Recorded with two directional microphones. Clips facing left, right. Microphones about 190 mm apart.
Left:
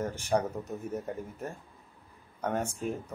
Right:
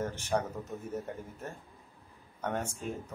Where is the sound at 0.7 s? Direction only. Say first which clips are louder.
Left 3 dB; 10° left (ahead or behind).